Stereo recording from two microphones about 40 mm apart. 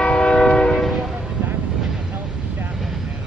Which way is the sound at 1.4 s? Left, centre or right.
Right.